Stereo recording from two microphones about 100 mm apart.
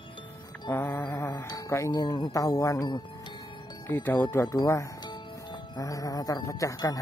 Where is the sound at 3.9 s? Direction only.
20° left (ahead or behind).